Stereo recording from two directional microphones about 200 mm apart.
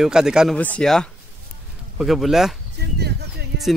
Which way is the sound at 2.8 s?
55° right (ahead or behind).